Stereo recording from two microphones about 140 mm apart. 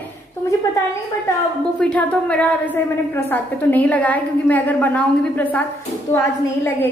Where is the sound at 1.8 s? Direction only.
5° left (ahead or behind).